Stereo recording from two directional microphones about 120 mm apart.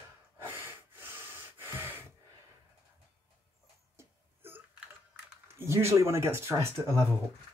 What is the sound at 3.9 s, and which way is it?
Wail, 20° right (ahead or behind).